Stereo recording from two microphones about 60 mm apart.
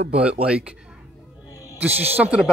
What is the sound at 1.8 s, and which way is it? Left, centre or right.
Speech, right.